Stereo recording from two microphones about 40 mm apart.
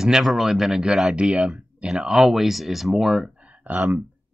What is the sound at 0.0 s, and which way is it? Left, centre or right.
Speech, centre.